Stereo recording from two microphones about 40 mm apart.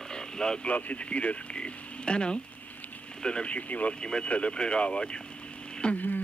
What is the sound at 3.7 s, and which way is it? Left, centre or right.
Speech, left.